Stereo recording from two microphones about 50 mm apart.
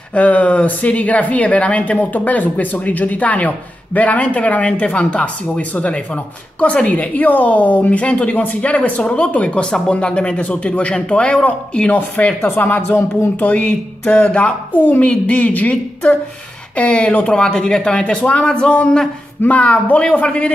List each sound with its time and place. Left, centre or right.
0.1 s speech: left
12.5 s speech: left
13.4 s speech: left